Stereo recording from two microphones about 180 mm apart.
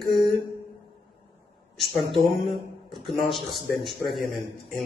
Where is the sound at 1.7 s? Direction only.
Centre (ahead or behind).